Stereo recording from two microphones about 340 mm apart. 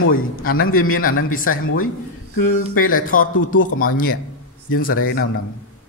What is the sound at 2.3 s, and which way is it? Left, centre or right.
Speech, left.